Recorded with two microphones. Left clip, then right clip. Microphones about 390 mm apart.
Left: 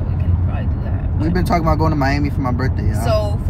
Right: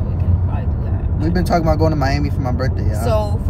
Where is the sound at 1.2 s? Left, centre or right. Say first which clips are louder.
Even; centre.